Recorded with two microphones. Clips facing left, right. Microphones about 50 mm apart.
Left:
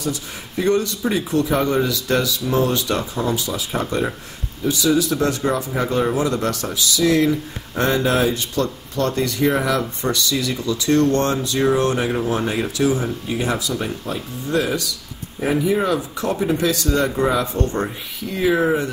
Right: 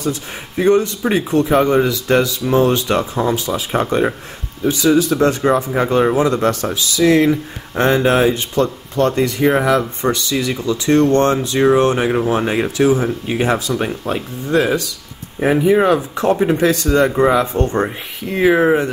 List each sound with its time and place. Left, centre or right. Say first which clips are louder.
0.0 s speech: right 4 dB; right
17.6 s speech: right 5 dB; right
18.3 s speech: right 5 dB; right